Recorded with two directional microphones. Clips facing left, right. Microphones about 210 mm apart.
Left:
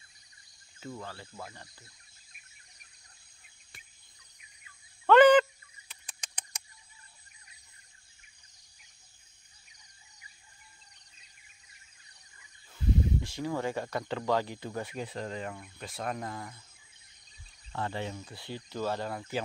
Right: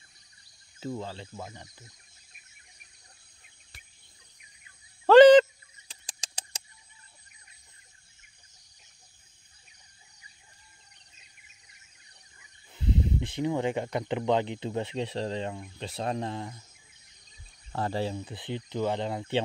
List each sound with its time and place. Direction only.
0.7 s speech: 25° right (ahead or behind)
5.0 s a sound: 30° right (ahead or behind)
12.7 s speech: 20° right (ahead or behind)
17.7 s speech: 35° right (ahead or behind)
18.2 s speech: 20° right (ahead or behind)